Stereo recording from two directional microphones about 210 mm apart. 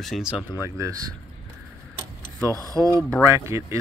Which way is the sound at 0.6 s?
15° right (ahead or behind).